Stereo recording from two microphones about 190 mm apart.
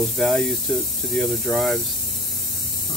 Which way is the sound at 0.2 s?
5° left (ahead or behind).